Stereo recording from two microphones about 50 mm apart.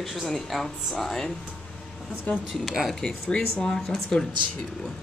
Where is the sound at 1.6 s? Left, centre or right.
Centre.